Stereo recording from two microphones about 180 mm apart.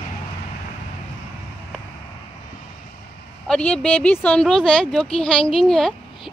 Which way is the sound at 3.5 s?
5° left (ahead or behind).